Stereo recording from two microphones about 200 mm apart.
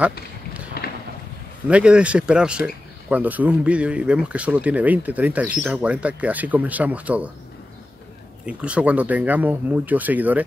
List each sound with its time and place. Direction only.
0.8 s a sound: 50° left (ahead or behind)
1.7 s speech: 5° right (ahead or behind)
8.5 s speech: 5° right (ahead or behind)